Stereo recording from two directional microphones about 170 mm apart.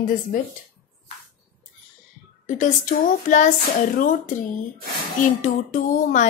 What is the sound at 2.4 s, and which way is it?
A woman's voice, 50° left (ahead or behind).